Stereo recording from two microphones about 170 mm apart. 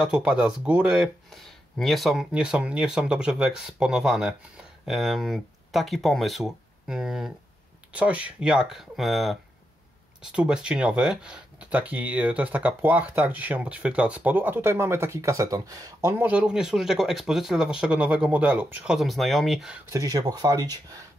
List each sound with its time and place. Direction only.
0.0 s speech: 5° right (ahead or behind)
19.9 s speech: 20° right (ahead or behind)